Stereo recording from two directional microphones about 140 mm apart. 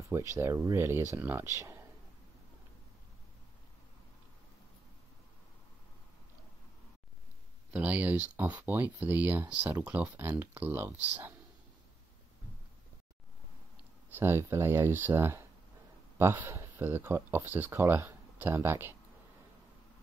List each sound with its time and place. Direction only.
0.1 s speech: 20° right (ahead or behind)
7.7 s speech: 10° right (ahead or behind)
14.1 s speech: 15° right (ahead or behind)